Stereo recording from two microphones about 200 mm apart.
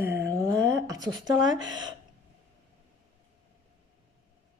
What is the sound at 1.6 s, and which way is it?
Speech, 20° right (ahead or behind).